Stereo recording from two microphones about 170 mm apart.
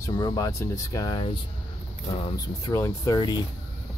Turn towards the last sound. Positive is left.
turn(degrees=25)  # may be behind; listen again after turning